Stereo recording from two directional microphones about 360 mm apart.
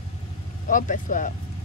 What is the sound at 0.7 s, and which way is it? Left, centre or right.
Speech, left.